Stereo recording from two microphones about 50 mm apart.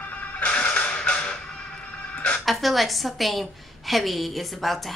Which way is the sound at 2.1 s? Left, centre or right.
Left.